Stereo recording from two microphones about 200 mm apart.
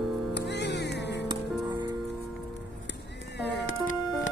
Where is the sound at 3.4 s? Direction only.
75° left (ahead or behind).